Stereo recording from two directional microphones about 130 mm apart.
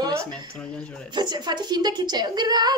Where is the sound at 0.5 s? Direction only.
5° left (ahead or behind).